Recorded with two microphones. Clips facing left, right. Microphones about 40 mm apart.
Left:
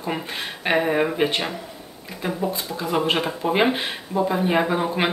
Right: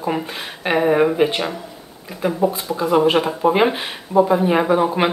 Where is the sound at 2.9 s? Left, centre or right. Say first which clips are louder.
Right 6 dB; centre.